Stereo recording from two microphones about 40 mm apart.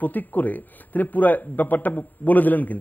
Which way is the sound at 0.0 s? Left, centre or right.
Left.